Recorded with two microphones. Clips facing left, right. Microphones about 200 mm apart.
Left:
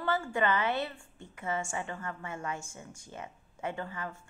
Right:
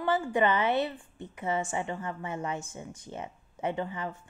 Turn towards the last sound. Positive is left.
turn(degrees=-20)  # may be behind; listen again after turning